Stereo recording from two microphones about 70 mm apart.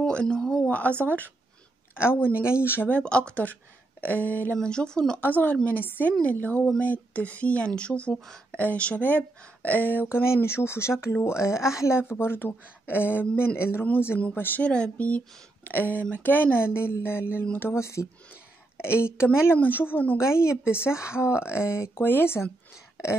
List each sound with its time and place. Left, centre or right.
0.0 s speech: centre
0.7 s speech: left
2.0 s speech: left
2.9 s speech: centre
4.6 s speech: centre
5.2 s speech: left
14.6 s speech: centre
20.2 s speech: left
20.4 s speech: centre
21.5 s speech: left